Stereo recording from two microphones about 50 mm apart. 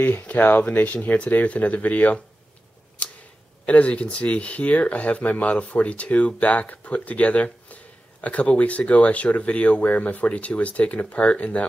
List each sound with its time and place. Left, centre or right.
0.0 s speech: left
3.0 s tick-tock: left
3.6 s speech: left